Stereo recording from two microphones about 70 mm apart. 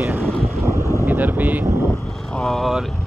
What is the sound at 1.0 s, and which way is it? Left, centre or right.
Vehicle, right.